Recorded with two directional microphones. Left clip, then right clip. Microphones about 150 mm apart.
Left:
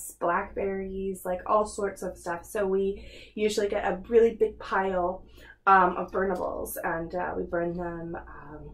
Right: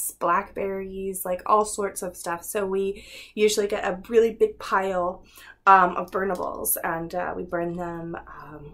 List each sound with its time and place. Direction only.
0.2 s speech: 25° right (ahead or behind)